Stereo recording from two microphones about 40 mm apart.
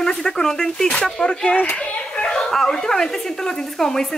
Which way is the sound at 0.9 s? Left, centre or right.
Left.